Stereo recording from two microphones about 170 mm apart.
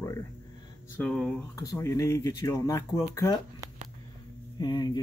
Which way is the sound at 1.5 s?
20° left (ahead or behind).